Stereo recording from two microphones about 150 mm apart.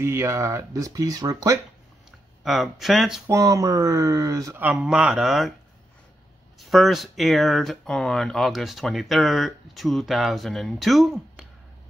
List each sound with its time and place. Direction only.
0.0 s speech: 20° right (ahead or behind)
2.0 s speech: centre (ahead or behind)
3.3 s speech: 20° right (ahead or behind)
4.7 s speech: 5° right (ahead or behind)
6.7 s speech: centre (ahead or behind)